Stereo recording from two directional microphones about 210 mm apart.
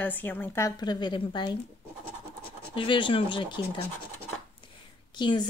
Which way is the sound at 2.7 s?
25° left (ahead or behind).